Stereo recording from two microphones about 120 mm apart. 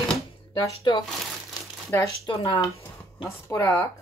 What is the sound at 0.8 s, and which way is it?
Speech, 40° left (ahead or behind).